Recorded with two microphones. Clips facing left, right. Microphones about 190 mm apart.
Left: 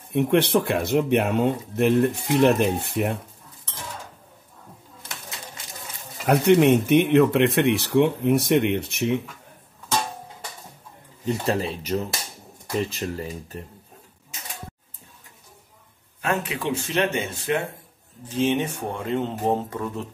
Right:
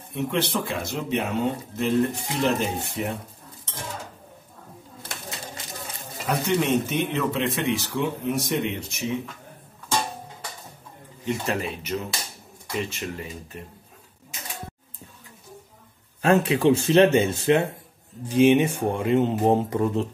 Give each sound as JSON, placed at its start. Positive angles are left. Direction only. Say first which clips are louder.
{"t": 0.1, "sound": "speech", "louder": "left 7 dB", "side_deg": 60}
{"t": 6.2, "sound": "speech", "louder": "left 7 dB", "side_deg": 60}
{"t": 11.2, "sound": "speech", "louder": "left 3 dB", "side_deg": 30}
{"t": 16.2, "sound": "speech", "louder": "right 7 dB", "side_deg": -30}
{"t": 18.3, "sound": "speech", "louder": "right 5 dB", "side_deg": -15}